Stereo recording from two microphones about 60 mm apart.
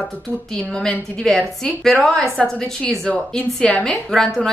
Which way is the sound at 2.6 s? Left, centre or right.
Centre.